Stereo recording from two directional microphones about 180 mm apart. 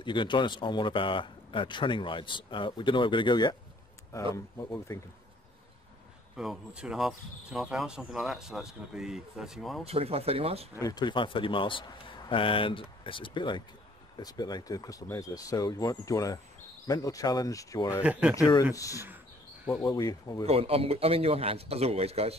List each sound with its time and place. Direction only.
0.0 s speech: 25° left (ahead or behind)
6.3 s speech: centre (ahead or behind)
9.8 s a man's voice: 35° right (ahead or behind)
10.8 s speech: 20° left (ahead or behind)
18.0 s speech: 5° right (ahead or behind)
18.3 s speech: 20° left (ahead or behind)
20.4 s a man's voice: 35° right (ahead or behind)